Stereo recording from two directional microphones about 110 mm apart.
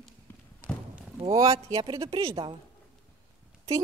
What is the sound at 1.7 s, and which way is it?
Speech, 40° right (ahead or behind).